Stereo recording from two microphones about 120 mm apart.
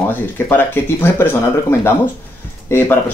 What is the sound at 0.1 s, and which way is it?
Speech, 15° left (ahead or behind).